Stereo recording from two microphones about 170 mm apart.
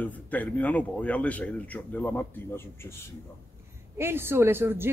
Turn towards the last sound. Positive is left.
turn(degrees=-15)  # may be behind; listen again after turning